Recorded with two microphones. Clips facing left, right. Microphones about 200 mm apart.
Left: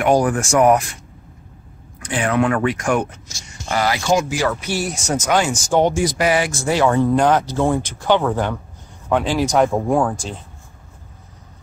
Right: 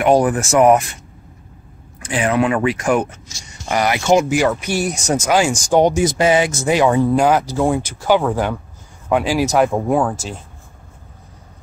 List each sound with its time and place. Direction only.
0.0 s speech: 5° right (ahead or behind)
2.0 s speech: 5° right (ahead or behind)
3.7 s speech: 20° right (ahead or behind)